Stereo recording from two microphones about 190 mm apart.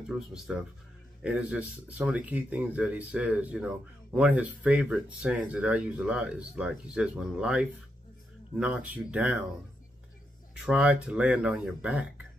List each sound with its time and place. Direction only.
0.3 s speech: 5° right (ahead or behind)
10.5 s speech: 5° right (ahead or behind)